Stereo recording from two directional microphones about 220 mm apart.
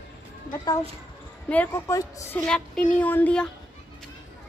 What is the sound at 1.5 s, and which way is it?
A woman's voice, 10° left (ahead or behind).